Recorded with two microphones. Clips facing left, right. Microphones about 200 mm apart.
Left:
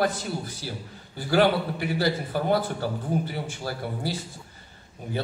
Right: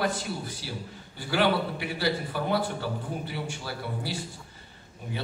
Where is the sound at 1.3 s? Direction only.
45° left (ahead or behind).